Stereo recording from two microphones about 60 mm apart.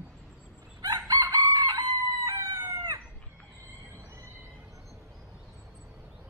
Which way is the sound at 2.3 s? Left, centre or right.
Right.